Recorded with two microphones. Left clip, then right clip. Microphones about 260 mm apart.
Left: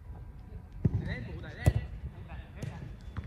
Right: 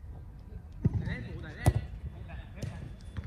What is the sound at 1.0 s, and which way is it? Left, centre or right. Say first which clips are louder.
Basketball bounce: even; left.